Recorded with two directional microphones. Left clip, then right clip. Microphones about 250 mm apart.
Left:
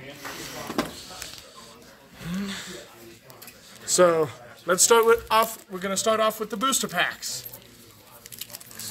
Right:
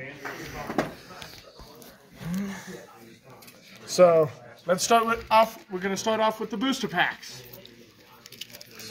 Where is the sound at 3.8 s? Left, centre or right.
Left.